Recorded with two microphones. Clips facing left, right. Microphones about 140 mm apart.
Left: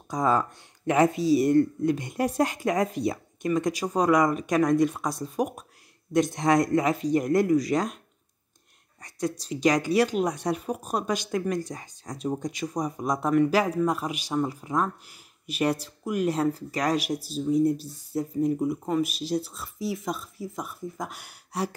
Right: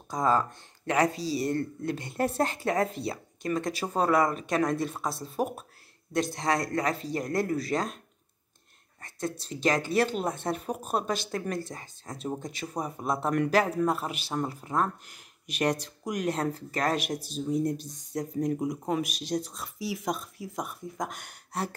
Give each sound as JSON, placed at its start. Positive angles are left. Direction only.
{"t": 0.1, "sound": "speech", "side_deg": 10}
{"t": 6.1, "sound": "speech", "side_deg": 20}
{"t": 9.0, "sound": "speech", "side_deg": 15}
{"t": 10.8, "sound": "speech", "side_deg": -5}
{"t": 11.1, "sound": "speech", "side_deg": 15}
{"t": 12.4, "sound": "speech", "side_deg": -5}
{"t": 13.3, "sound": "speech", "side_deg": 5}
{"t": 18.6, "sound": "speech", "side_deg": -5}